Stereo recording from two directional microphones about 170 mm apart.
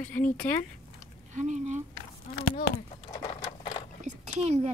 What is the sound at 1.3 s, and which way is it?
Speech, 45° right (ahead or behind).